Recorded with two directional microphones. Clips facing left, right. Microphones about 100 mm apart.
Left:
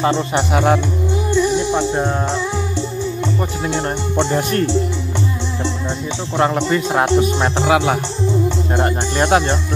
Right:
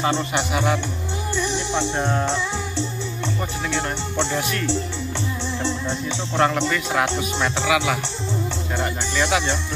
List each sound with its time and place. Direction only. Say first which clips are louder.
0.0 s speech: left 5 dB; 45° left (ahead or behind)
1.3 s music: left 7 dB; 15° left (ahead or behind)
4.3 s speech: left 6 dB; 45° left (ahead or behind)
5.6 s music: left 2 dB; 15° left (ahead or behind)
6.7 s speech: left 7 dB; 30° left (ahead or behind); by 9.6 s 50° left (ahead or behind)